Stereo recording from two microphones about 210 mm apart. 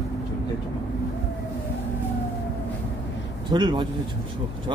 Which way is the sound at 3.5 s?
20° right (ahead or behind).